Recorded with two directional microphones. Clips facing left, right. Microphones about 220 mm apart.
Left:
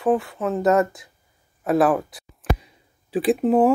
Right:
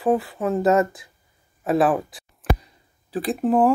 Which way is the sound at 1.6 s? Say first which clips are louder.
Left 1 dB; centre (ahead or behind).